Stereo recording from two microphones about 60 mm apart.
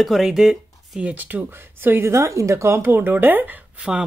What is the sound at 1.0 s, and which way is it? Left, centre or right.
Speech, right.